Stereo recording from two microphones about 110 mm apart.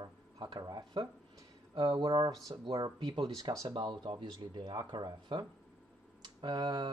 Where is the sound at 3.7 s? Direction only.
45° right (ahead or behind).